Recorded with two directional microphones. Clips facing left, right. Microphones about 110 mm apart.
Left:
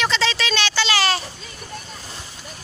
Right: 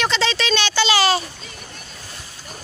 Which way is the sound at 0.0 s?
Centre (ahead or behind).